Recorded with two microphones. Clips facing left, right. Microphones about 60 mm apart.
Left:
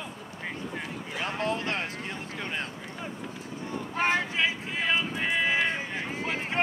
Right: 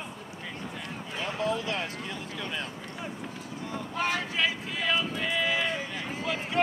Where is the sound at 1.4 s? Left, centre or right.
Left.